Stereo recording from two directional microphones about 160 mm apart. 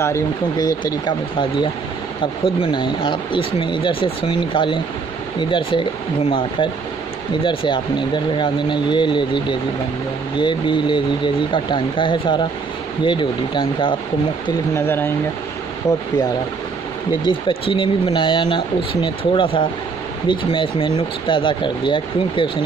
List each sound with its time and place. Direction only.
0.0 s speech: 20° left (ahead or behind)
7.4 s speech: 30° left (ahead or behind)
14.7 s speech: 15° left (ahead or behind)
17.2 s speech: 30° left (ahead or behind)